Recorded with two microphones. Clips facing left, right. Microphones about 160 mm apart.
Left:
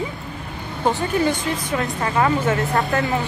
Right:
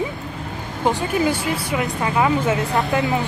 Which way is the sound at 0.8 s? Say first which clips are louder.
Even; 10° right (ahead or behind).